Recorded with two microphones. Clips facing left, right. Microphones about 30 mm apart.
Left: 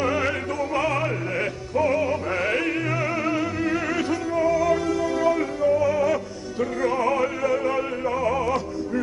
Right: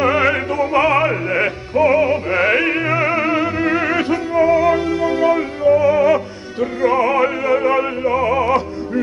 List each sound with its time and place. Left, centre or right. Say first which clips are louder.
0.0 s music: right 8 dB; right